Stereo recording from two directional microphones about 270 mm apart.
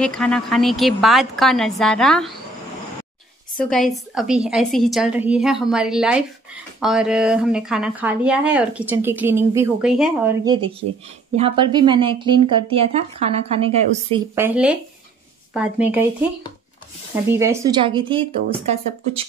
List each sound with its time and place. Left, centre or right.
0.0 s a woman's voice: centre
3.5 s a woman's voice: centre
10.4 s a woman's voice: centre
14.3 s a woman's voice: centre
17.3 s a woman's voice: centre